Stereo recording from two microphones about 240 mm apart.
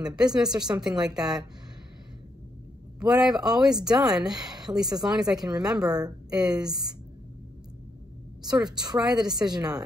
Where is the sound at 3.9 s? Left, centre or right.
Centre.